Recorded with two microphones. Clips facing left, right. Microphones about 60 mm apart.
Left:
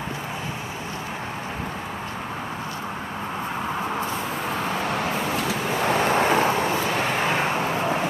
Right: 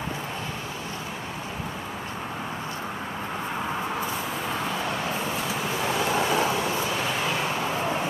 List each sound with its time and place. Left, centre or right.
4.5 s vehicle: left